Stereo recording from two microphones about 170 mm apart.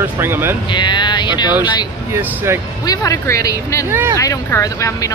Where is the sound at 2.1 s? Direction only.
15° right (ahead or behind).